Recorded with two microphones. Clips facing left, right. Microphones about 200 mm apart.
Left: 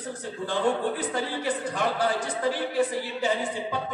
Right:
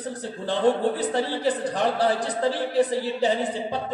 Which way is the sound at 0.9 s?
35° right (ahead or behind).